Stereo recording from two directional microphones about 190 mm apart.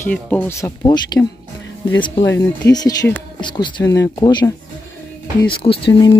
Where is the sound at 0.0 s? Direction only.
10° left (ahead or behind).